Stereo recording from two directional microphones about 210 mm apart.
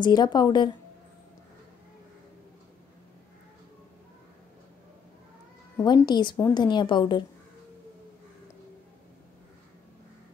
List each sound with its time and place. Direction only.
0.0 s speech: 20° left (ahead or behind)
5.8 s speech: 15° left (ahead or behind)